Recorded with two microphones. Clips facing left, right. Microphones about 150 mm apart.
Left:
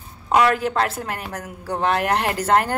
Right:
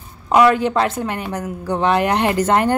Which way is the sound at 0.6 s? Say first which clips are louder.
Right 4 dB; centre (ahead or behind).